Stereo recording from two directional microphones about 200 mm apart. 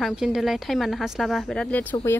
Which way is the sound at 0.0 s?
5° right (ahead or behind).